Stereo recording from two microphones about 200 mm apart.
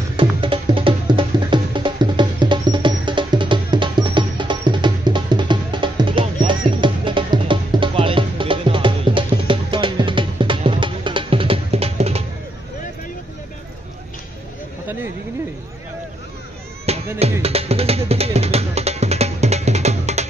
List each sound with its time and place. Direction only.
0.2 s music: 25° right (ahead or behind)
16.8 s music: 30° right (ahead or behind)